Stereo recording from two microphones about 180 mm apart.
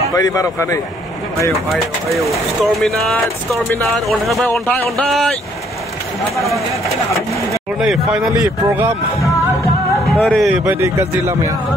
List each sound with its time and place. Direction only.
0.1 s speech: 20° left (ahead or behind)
1.5 s speech: centre (ahead or behind)
6.3 s speech: centre (ahead or behind)
7.8 s speech: centre (ahead or behind)
8.3 s speech: 15° right (ahead or behind)
10.0 s speech: 5° left (ahead or behind); by 11.5 s 15° right (ahead or behind)